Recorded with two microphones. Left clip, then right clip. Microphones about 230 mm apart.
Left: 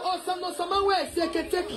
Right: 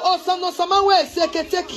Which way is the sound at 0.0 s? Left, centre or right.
Right.